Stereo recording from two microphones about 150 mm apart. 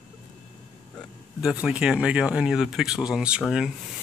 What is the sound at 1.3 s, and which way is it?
Speech, 5° right (ahead or behind).